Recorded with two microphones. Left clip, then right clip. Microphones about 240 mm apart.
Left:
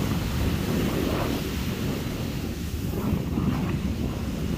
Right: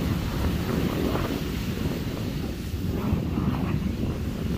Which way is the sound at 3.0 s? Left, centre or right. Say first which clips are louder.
Left 1 dB; centre.